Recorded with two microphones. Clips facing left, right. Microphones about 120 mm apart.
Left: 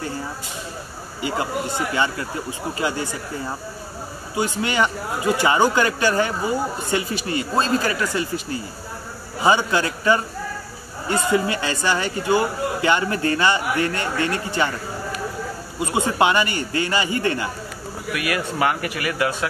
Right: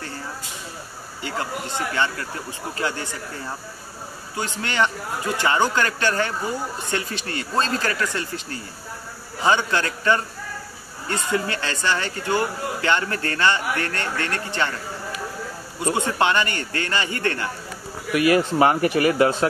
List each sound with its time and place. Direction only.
2.8 s a man's voice: 10° left (ahead or behind)
15.9 s a man's voice: 10° left (ahead or behind)
18.1 s speech: 30° right (ahead or behind)